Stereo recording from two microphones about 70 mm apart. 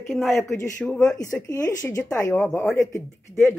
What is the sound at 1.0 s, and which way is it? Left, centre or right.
Speech, left.